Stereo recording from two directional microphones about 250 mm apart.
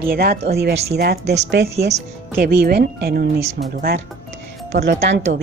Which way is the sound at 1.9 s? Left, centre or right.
Right.